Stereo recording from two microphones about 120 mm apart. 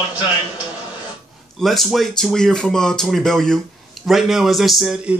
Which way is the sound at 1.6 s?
Centre (ahead or behind).